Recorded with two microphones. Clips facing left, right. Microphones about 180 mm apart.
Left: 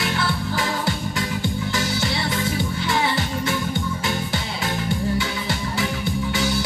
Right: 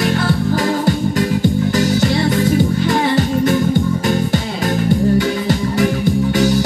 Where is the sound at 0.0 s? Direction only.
50° right (ahead or behind).